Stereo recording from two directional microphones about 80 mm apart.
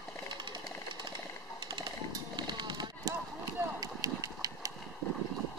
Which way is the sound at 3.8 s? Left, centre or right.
Right.